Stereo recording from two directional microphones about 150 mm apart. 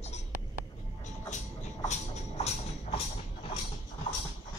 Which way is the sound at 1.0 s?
50° left (ahead or behind).